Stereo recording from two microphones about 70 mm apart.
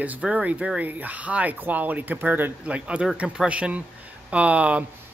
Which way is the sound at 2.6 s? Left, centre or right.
Centre.